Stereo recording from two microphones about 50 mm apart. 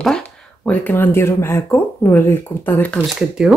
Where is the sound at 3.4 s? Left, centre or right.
Centre.